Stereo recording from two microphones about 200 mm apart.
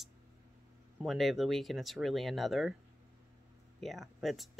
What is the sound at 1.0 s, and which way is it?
Speech, centre (ahead or behind).